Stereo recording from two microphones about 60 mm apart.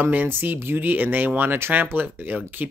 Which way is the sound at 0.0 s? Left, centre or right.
Right.